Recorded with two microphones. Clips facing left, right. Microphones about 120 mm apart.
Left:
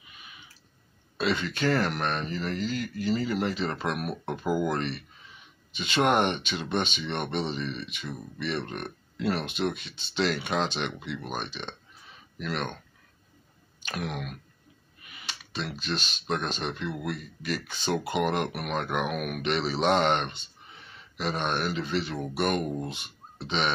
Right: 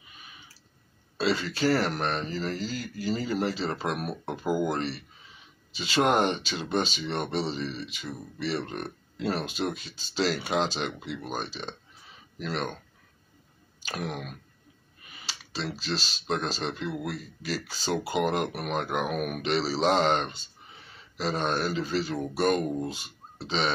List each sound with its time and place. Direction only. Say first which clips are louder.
1.1 s speech: right 1 dB; 35° right (ahead or behind)
6.0 s speech: left 1 dB; 30° right (ahead or behind)
13.8 s speech: even; 35° right (ahead or behind)